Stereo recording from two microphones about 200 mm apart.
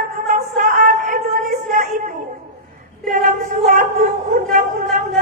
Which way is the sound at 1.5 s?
40° right (ahead or behind).